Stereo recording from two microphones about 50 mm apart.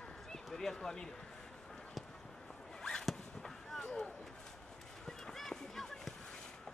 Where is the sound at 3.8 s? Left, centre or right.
Centre.